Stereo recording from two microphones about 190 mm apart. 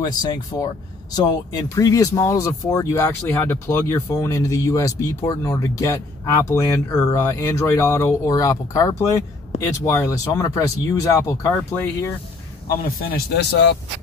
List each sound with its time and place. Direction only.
0.0 s speech: 20° left (ahead or behind)
12.8 s speech: 55° left (ahead or behind)